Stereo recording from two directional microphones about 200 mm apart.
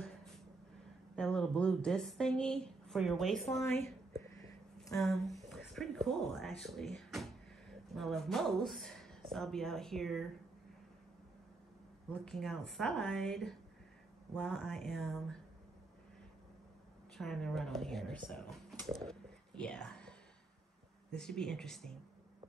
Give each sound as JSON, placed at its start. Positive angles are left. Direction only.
{"t": 1.1, "sound": "speech", "side_deg": 5}
{"t": 12.1, "sound": "speech", "side_deg": 0}
{"t": 17.2, "sound": "speech", "side_deg": 0}
{"t": 21.2, "sound": "speech", "side_deg": 5}